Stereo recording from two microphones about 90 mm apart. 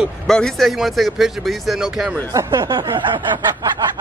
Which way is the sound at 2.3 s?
40° right (ahead or behind).